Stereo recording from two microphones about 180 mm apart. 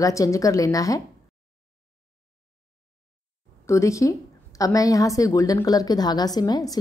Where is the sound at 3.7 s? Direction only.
15° left (ahead or behind).